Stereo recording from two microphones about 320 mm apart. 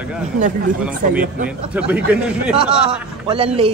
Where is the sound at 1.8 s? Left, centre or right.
Centre.